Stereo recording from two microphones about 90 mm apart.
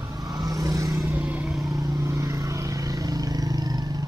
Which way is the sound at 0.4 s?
40° right (ahead or behind).